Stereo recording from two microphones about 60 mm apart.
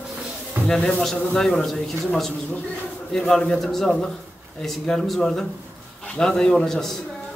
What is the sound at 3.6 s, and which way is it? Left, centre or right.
A man's voice, centre.